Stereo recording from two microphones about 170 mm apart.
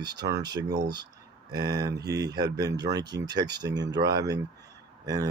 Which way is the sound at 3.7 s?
90° right.